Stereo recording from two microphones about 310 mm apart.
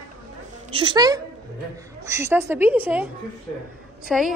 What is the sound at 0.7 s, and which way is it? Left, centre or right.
A woman's voice, centre.